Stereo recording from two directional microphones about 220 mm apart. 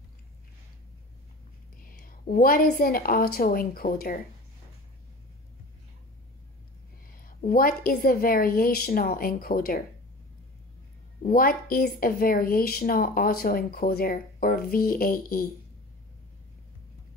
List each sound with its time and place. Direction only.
1.9 s speech: 40° left (ahead or behind)
7.1 s speech: 40° left (ahead or behind)
11.2 s speech: 40° left (ahead or behind)